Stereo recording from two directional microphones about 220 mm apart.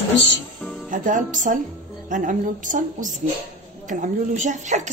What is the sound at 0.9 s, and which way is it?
A woman's voice, 35° right (ahead or behind).